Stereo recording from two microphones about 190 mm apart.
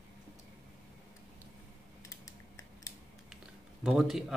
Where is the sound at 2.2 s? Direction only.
15° left (ahead or behind).